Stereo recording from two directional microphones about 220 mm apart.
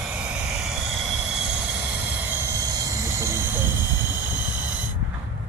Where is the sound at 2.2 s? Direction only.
10° right (ahead or behind).